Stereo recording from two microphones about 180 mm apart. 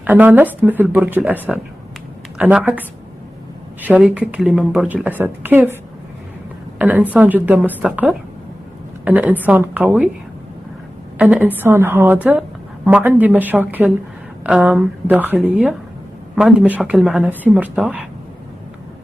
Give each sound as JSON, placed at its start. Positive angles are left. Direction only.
{"t": 0.0, "sound": "a woman's voice", "side_deg": -10}
{"t": 3.8, "sound": "a woman's voice", "side_deg": -10}
{"t": 6.8, "sound": "a woman's voice", "side_deg": -10}
{"t": 11.1, "sound": "a woman's voice", "side_deg": -5}